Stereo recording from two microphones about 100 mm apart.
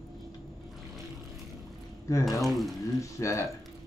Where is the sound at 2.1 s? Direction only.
30° left (ahead or behind).